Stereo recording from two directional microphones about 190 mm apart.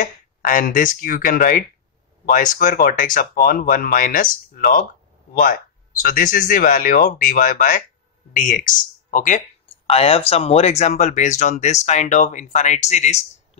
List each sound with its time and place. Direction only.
0.0 s speech: 45° left (ahead or behind)
9.8 s speech: 30° left (ahead or behind)